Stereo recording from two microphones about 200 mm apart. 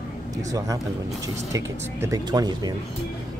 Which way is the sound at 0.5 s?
15° right (ahead or behind).